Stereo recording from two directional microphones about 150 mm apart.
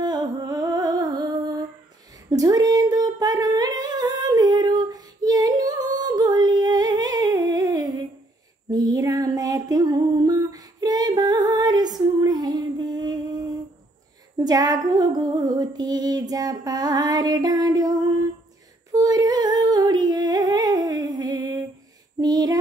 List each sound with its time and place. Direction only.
0.0 s humming: 25° right (ahead or behind)
8.6 s music: 25° right (ahead or behind)
18.9 s humming: 25° right (ahead or behind)
22.2 s a sound: 25° right (ahead or behind)